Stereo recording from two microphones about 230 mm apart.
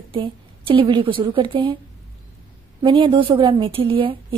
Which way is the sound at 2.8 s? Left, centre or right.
Right.